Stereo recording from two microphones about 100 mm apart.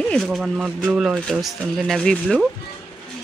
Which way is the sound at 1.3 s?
Centre (ahead or behind).